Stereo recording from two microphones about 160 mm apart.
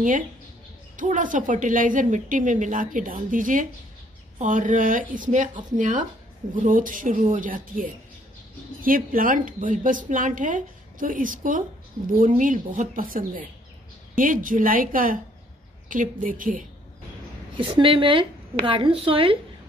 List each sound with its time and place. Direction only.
0.9 s a woman's voice: 55° right (ahead or behind)
17.6 s a woman's voice: 30° right (ahead or behind)